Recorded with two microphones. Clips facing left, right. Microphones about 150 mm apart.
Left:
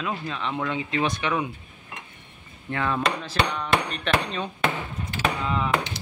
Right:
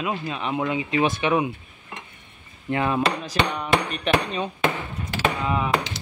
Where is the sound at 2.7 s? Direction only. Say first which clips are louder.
Right 3 dB; 20° right (ahead or behind).